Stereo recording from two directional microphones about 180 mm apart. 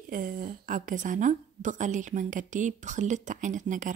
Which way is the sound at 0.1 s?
50° right (ahead or behind).